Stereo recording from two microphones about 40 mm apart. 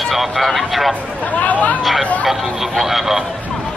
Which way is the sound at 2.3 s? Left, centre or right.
Centre.